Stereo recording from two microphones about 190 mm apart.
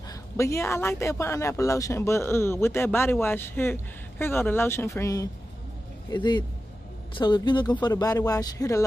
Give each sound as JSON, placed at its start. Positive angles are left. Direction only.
{"t": 0.1, "sound": "a man's voice", "side_deg": 15}